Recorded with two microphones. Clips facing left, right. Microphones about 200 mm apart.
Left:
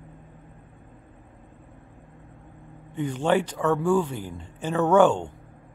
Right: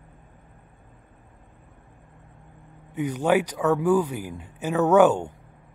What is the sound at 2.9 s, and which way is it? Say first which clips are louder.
Speech: right 1 dB; 10° right (ahead or behind).